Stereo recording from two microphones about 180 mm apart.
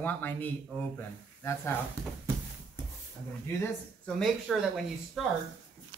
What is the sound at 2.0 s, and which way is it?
Speech, 20° right (ahead or behind).